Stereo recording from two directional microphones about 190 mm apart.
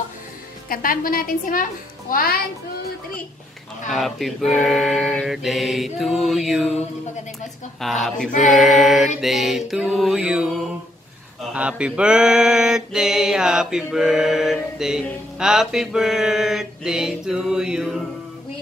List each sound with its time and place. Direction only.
0.7 s a woman's voice: 50° left (ahead or behind)
3.9 s mantra: centre (ahead or behind)
7.8 s mantra: centre (ahead or behind)
11.5 s mantra: 5° right (ahead or behind)